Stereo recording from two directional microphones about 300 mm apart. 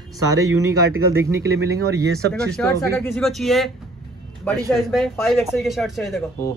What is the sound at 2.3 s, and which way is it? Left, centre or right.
Speech, centre.